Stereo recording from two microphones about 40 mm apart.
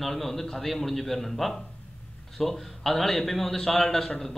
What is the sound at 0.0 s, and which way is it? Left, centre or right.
A man's voice, centre.